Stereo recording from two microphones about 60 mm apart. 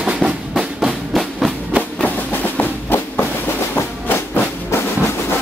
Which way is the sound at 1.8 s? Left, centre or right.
Left.